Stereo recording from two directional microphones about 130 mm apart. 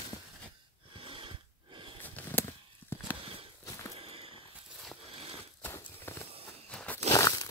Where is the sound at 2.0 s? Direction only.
15° left (ahead or behind).